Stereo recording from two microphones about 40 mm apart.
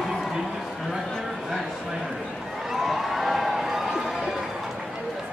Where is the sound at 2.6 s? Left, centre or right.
Centre.